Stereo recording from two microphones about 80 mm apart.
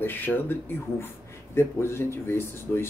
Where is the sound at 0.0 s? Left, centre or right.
Left.